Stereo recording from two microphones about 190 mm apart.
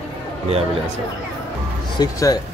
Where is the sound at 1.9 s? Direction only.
20° left (ahead or behind).